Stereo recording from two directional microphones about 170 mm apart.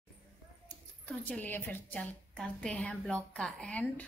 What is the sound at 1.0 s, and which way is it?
A woman's voice, 10° left (ahead or behind).